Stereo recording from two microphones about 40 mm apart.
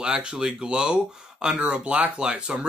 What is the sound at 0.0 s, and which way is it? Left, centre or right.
Speech, right.